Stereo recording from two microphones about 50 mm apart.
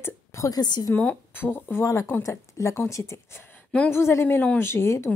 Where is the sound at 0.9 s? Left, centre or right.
Left.